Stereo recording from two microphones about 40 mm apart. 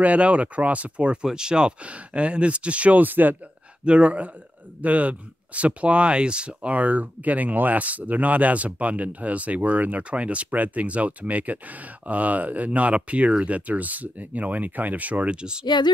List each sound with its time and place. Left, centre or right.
0.0 s speech: right
1.2 s speech: centre
1.9 s speech: right
3.0 s speech: right
3.8 s speech: right